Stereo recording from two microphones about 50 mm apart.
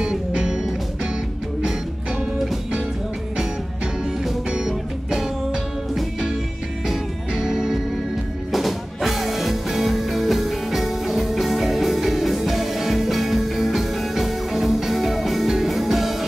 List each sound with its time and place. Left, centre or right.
0.0 s music: centre
4.5 s music: centre
6.9 s music: centre